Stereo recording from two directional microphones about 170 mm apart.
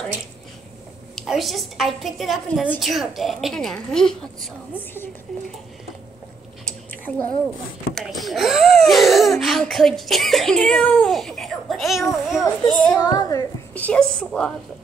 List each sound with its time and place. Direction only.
1.1 s a child's voice: centre (ahead or behind)
6.6 s squish: 5° left (ahead or behind)
7.9 s a child's voice: centre (ahead or behind)
13.0 s a woman's voice: 20° left (ahead or behind)
13.7 s a child's voice: 5° left (ahead or behind)